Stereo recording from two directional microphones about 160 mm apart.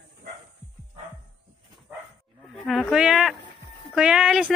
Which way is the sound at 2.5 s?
Centre (ahead or behind).